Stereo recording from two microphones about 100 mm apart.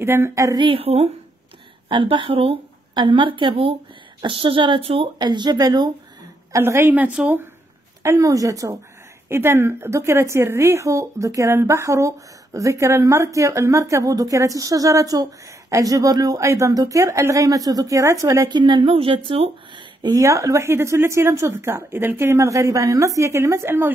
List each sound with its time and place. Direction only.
0.0 s a woman's voice: 25° right (ahead or behind)
0.6 s a woman's voice: 65° right (ahead or behind); by 1.1 s 90° right
1.9 s speech: 55° right (ahead or behind)
2.9 s a woman's voice: 50° right (ahead or behind); by 5.1 s 75° right (ahead or behind)
5.2 s a woman's voice: 50° right (ahead or behind)
6.5 s speech: 25° right (ahead or behind)
8.0 s a woman's voice: 30° right (ahead or behind)
18.5 s a woman's voice: 50° right (ahead or behind)
18.9 s speech: 65° right (ahead or behind)
19.7 s a sound: 45° right (ahead or behind)
20.2 s speech: 30° right (ahead or behind)